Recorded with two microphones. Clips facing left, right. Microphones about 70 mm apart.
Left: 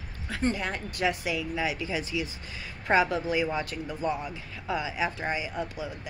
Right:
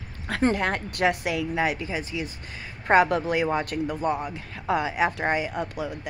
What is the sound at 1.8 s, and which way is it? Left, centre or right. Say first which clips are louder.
A woman's voice: right 1 dB; right.